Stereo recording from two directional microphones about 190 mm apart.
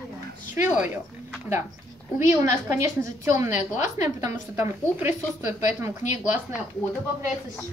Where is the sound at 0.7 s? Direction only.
10° right (ahead or behind).